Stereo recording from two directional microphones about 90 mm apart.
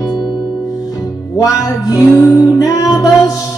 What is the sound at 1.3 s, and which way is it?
Music, 45° left (ahead or behind).